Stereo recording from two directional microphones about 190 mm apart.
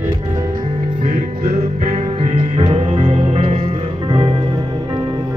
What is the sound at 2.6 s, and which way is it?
Music, 30° right (ahead or behind).